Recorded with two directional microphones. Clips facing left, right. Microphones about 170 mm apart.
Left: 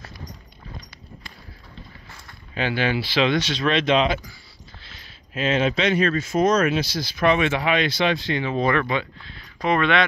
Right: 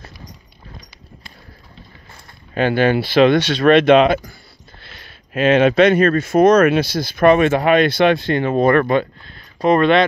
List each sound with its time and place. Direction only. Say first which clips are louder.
2.5 s speech: right 8 dB; 50° right (ahead or behind)
9.6 s speech: right 7 dB; 40° right (ahead or behind)